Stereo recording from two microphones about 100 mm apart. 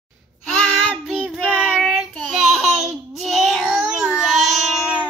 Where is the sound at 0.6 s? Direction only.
10° left (ahead or behind).